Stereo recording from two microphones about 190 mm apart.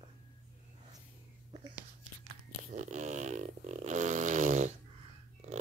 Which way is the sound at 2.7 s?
40° right (ahead or behind).